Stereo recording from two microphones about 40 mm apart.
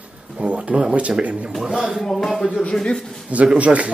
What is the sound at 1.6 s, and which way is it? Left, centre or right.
Speech, centre.